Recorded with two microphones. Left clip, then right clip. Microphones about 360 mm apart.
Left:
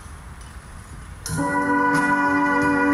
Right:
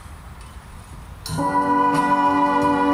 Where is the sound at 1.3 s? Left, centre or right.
Centre.